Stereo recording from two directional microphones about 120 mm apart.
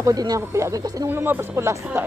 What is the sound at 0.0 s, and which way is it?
Speech, 30° right (ahead or behind).